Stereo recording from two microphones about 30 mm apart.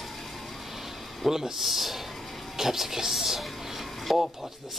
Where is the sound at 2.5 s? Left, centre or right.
Centre.